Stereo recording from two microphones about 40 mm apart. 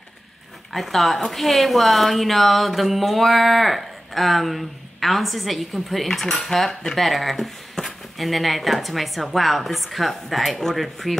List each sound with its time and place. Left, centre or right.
0.7 s a woman's voice: centre
7.0 s a woman's voice: centre